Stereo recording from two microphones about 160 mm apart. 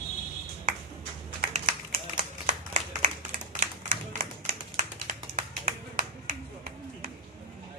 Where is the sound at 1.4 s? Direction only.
55° right (ahead or behind).